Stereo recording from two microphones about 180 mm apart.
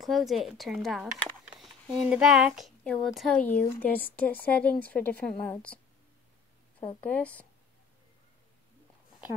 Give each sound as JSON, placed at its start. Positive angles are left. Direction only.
{"t": 0.0, "sound": "a woman's voice", "side_deg": 0}
{"t": 7.0, "sound": "a woman's voice", "side_deg": 10}